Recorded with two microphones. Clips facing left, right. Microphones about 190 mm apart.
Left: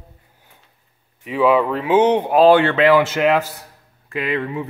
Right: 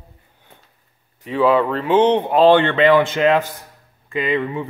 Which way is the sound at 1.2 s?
5° left (ahead or behind).